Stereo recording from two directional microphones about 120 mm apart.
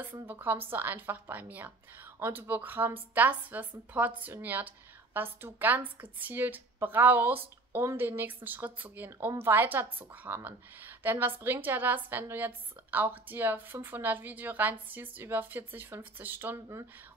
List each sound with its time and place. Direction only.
0.3 s a woman's voice: 15° right (ahead or behind)